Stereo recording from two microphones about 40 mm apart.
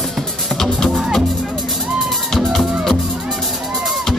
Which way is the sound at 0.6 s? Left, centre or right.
Centre.